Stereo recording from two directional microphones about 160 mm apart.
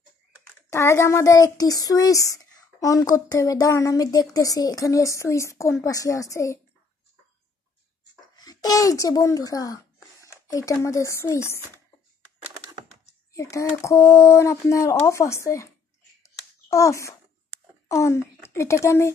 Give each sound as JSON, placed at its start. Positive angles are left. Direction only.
{"t": 0.7, "sound": "speech", "side_deg": 15}
{"t": 8.4, "sound": "a child's voice", "side_deg": 25}
{"t": 13.3, "sound": "speech", "side_deg": 20}
{"t": 16.2, "sound": "a sound", "side_deg": 20}
{"t": 17.8, "sound": "a child's voice", "side_deg": 20}